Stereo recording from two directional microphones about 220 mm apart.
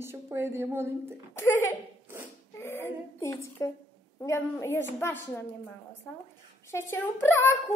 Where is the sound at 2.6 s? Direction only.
10° left (ahead or behind).